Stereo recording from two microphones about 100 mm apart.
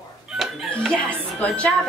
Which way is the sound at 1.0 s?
10° left (ahead or behind).